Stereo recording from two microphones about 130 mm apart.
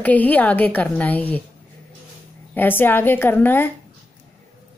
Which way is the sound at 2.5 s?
15° left (ahead or behind).